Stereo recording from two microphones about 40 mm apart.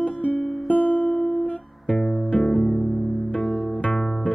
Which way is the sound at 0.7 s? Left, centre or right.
Left.